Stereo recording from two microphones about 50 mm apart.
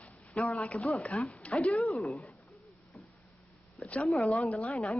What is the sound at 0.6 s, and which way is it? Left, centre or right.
Speech, left.